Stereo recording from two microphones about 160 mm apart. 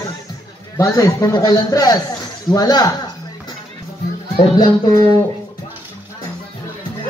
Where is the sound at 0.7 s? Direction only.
20° left (ahead or behind).